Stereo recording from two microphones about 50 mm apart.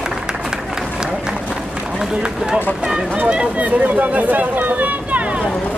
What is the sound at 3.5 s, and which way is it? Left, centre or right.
Speech, right.